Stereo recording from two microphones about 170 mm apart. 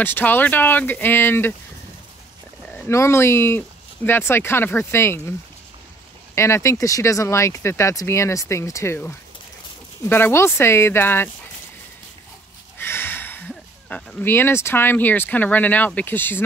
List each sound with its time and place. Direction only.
0.0 s speech: 10° left (ahead or behind)
2.7 s speech: 15° left (ahead or behind)
6.3 s speech: 15° left (ahead or behind)
12.7 s speech: 15° left (ahead or behind)